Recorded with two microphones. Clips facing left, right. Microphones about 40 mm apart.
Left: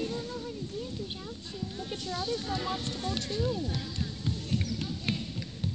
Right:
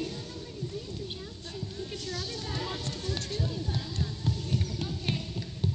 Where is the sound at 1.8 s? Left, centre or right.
Left.